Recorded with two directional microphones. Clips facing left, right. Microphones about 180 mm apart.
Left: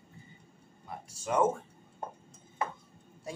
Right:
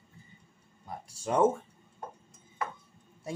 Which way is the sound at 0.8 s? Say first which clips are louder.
Right 1 dB; 35° right (ahead or behind).